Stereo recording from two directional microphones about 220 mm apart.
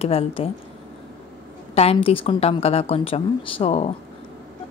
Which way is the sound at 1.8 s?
25° left (ahead or behind).